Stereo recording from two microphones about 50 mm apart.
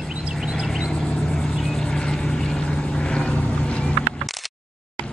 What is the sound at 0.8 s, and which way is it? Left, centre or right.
Vehicle, centre.